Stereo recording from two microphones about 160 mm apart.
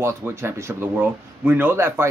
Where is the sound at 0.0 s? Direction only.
15° right (ahead or behind).